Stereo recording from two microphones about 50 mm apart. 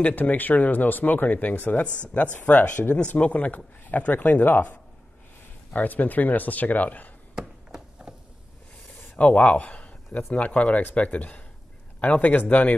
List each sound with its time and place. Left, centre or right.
0.0 s speech: left
5.7 s speech: left
7.3 s a sound: centre
9.1 s a man's voice: left